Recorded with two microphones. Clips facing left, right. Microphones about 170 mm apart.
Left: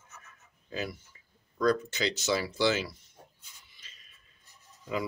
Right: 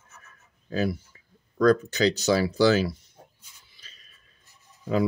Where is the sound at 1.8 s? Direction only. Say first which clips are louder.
Right 8 dB; 40° right (ahead or behind).